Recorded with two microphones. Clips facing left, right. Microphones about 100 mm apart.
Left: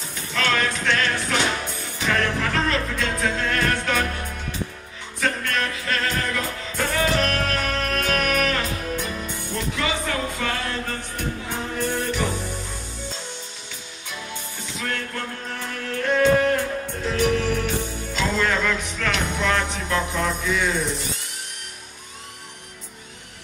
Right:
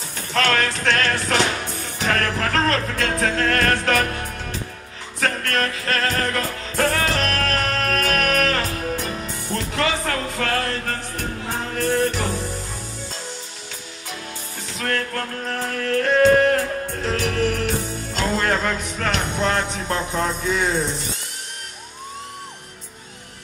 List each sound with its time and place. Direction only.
0.1 s music: 55° right (ahead or behind)
5.2 s music: 50° right (ahead or behind)
14.8 s music: 50° right (ahead or behind); by 20.8 s 35° right (ahead or behind)